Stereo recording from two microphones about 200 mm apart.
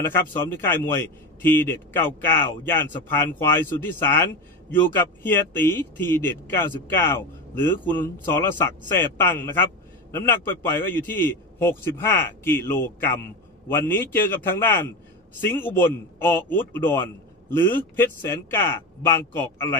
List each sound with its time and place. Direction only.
0.1 s a man's voice: 10° left (ahead or behind)